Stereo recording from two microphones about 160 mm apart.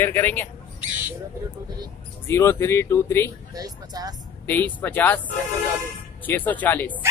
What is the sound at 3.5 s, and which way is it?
Speech, 25° right (ahead or behind).